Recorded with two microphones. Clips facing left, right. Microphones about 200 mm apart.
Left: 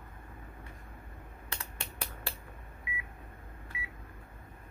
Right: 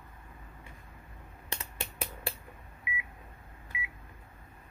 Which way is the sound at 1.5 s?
20° right (ahead or behind).